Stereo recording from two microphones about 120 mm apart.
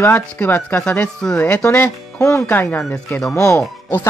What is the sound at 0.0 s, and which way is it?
Speech, 15° left (ahead or behind).